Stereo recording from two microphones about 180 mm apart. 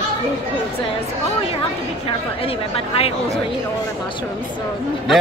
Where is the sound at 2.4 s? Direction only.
30° left (ahead or behind).